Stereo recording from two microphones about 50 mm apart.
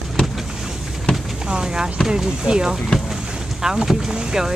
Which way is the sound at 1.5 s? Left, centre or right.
Centre.